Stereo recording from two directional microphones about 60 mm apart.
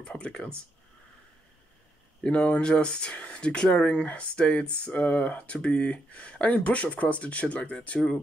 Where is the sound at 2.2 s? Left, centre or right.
Left.